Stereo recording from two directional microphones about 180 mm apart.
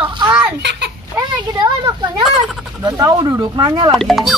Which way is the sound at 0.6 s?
65° right (ahead or behind).